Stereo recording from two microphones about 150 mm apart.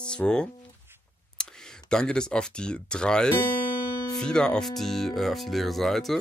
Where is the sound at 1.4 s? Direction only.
5° left (ahead or behind).